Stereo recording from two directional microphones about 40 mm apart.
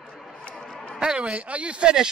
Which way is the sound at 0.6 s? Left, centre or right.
Centre.